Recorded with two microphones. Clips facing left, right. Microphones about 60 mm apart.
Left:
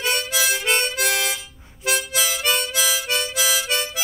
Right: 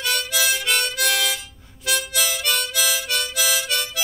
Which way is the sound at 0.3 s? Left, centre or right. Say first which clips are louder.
Even; left.